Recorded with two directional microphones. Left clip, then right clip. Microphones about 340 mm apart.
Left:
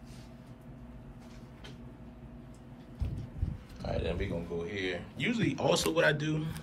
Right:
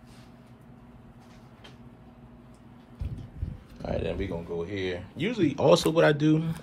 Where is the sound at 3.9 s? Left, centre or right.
Right.